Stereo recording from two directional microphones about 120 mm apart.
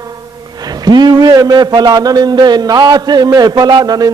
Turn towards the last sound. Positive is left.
turn(degrees=-35)  # may be behind; listen again after turning